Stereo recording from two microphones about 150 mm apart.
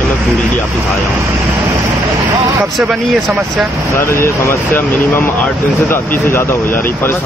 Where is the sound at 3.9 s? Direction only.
15° left (ahead or behind).